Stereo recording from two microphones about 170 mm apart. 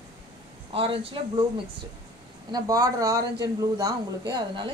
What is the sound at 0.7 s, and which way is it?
Speech, 35° right (ahead or behind).